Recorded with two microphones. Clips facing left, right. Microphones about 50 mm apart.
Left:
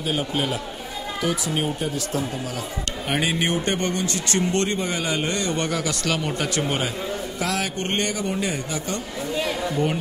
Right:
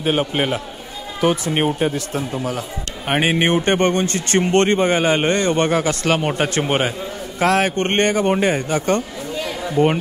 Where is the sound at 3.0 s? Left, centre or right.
Right.